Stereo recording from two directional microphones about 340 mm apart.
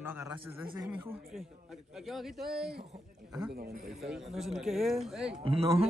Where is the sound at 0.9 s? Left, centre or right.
Centre.